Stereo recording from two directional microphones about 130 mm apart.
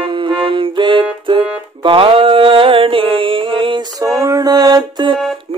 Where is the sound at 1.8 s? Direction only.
45° right (ahead or behind).